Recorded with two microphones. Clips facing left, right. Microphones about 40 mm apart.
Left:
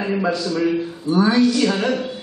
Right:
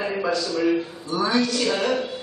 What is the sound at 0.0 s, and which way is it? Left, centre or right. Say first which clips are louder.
Speech: left 3 dB; centre.